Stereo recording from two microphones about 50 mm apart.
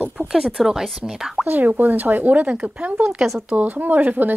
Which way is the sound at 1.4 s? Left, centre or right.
Right.